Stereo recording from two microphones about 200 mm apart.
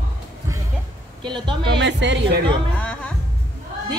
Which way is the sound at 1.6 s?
60° right (ahead or behind).